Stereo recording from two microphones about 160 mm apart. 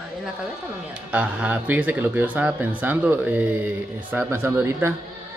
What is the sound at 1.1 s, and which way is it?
Speech, 10° right (ahead or behind).